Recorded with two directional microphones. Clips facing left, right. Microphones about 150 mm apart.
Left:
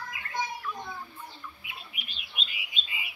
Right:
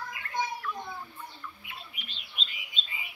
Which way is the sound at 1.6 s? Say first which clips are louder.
Even; 10° left (ahead or behind).